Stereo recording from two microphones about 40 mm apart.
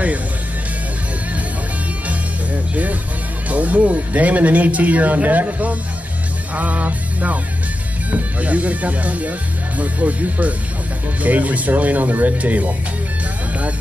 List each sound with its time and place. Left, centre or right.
2.0 s music: right
3.4 s speech: right
6.5 s music: right
8.1 s speech: right